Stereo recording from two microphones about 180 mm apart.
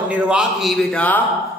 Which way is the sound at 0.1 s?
5° right (ahead or behind).